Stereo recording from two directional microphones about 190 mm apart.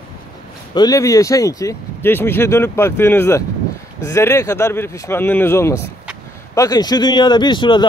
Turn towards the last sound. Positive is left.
turn(degrees=25)  # may be behind; listen again after turning